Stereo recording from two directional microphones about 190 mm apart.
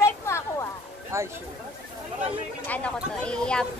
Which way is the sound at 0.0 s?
15° left (ahead or behind).